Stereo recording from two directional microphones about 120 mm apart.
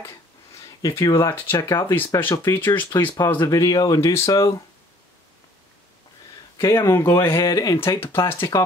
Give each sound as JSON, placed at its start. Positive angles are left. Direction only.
{"t": 0.8, "sound": "speech", "side_deg": 30}
{"t": 3.3, "sound": "speech", "side_deg": 30}
{"t": 6.6, "sound": "speech", "side_deg": 20}